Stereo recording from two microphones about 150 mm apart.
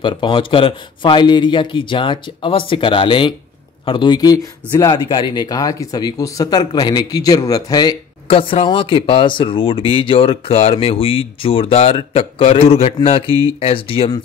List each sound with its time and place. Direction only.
0.0 s speech: 35° left (ahead or behind)